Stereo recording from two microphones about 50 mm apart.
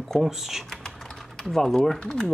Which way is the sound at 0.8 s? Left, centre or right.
Centre.